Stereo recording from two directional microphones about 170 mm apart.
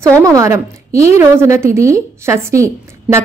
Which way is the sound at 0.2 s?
20° right (ahead or behind).